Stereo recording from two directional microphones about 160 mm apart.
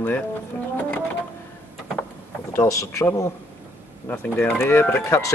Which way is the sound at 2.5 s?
15° left (ahead or behind).